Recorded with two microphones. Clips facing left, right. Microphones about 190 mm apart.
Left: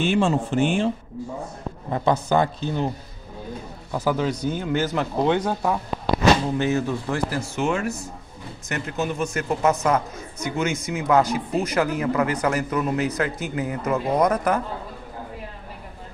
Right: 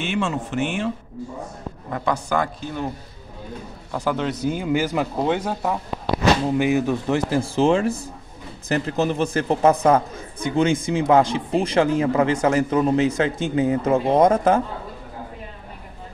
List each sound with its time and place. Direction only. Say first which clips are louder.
0.0 s a man's voice: left 4 dB; 35° left (ahead or behind)
3.9 s speech: left 1 dB; 5° left (ahead or behind)
6.6 s a man's voice: right 3 dB; 15° right (ahead or behind)